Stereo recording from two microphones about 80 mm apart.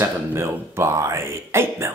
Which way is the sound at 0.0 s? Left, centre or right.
Right.